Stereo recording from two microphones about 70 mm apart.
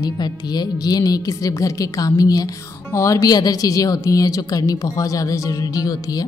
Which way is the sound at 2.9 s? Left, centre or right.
Left.